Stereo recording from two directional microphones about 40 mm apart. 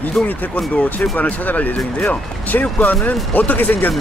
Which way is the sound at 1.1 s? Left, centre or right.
Left.